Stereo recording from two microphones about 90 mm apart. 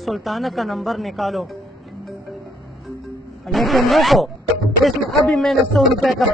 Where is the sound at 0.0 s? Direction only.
Centre (ahead or behind).